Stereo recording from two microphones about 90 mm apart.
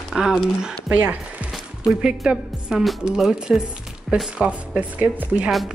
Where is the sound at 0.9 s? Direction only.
15° right (ahead or behind).